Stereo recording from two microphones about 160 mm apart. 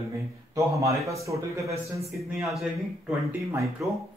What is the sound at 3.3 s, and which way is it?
Speech, 15° right (ahead or behind).